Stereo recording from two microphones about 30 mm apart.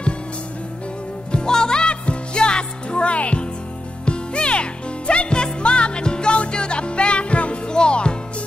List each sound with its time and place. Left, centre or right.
1.3 s music: left
7.6 s music: left